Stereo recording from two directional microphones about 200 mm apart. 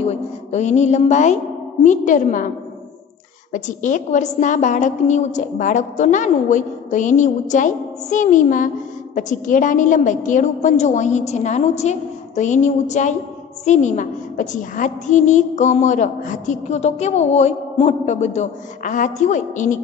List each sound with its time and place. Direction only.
0.0 s a woman's voice: 35° left (ahead or behind)
3.5 s a woman's voice: 40° left (ahead or behind)